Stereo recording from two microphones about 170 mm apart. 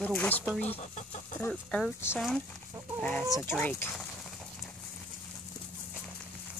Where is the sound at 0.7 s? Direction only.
40° left (ahead or behind).